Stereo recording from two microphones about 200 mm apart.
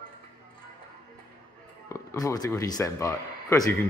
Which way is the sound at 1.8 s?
15° left (ahead or behind).